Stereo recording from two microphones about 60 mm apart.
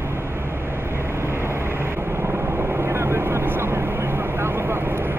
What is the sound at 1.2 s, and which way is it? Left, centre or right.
Vehicle, right.